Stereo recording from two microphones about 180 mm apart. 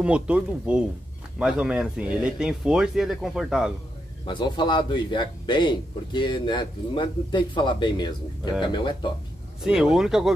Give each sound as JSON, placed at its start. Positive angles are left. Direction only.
{"t": 0.0, "sound": "speech", "side_deg": -5}
{"t": 4.3, "sound": "a man's voice", "side_deg": 25}
{"t": 9.6, "sound": "speech", "side_deg": -5}